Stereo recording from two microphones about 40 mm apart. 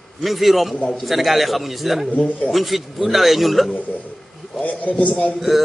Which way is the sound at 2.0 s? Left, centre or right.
Left.